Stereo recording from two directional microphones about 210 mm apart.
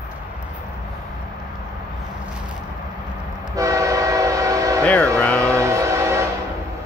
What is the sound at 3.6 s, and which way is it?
Train, 15° right (ahead or behind).